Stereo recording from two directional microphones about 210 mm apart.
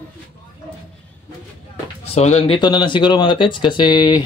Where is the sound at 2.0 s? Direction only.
30° left (ahead or behind).